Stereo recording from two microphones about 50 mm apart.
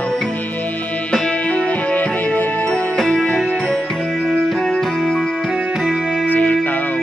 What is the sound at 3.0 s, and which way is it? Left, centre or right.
Music, centre.